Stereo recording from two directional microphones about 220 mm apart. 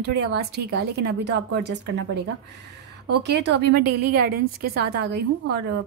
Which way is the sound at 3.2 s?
50° right (ahead or behind).